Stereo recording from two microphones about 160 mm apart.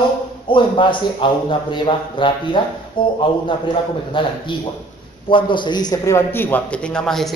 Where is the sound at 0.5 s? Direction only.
30° left (ahead or behind).